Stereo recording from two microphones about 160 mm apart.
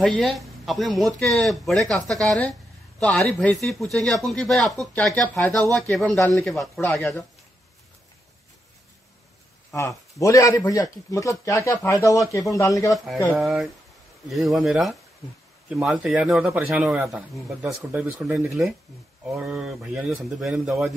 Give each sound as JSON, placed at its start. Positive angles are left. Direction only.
{"t": 0.0, "sound": "speech", "side_deg": 0}
{"t": 9.8, "sound": "speech", "side_deg": 20}
{"t": 12.9, "sound": "speech", "side_deg": 0}